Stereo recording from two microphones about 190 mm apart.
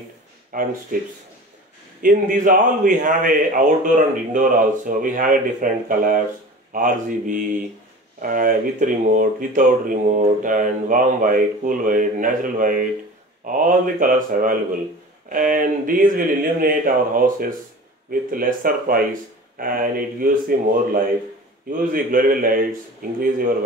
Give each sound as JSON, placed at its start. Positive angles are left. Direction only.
{"t": 0.5, "sound": "speech", "side_deg": -45}